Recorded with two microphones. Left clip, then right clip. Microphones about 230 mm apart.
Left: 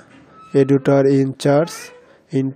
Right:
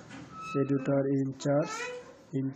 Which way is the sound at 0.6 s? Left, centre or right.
Left.